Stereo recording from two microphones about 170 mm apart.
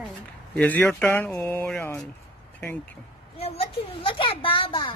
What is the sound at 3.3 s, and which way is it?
A woman's voice, 35° left (ahead or behind).